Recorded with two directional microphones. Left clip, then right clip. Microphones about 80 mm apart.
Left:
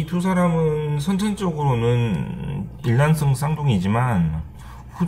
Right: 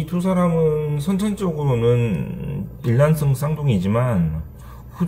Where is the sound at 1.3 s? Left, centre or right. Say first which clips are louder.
Even; centre.